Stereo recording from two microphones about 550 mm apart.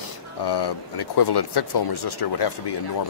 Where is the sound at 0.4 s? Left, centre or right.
Left.